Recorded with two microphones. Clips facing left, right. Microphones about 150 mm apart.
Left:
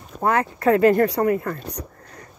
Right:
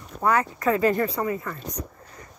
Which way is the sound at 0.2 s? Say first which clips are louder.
Left 2 dB; 55° left (ahead or behind).